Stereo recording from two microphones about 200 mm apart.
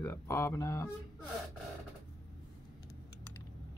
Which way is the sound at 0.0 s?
15° left (ahead or behind).